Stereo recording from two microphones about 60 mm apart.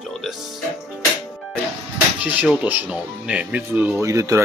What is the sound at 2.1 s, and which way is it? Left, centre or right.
Speech, right.